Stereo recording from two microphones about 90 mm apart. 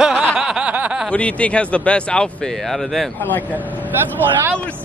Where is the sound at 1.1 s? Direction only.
15° left (ahead or behind).